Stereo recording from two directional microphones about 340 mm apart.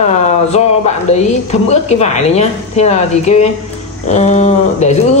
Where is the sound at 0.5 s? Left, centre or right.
Centre.